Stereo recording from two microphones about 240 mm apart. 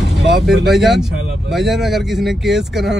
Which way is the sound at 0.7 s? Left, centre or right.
Centre.